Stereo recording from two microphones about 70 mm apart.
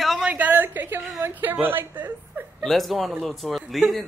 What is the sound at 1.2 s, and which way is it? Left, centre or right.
A woman's voice, right.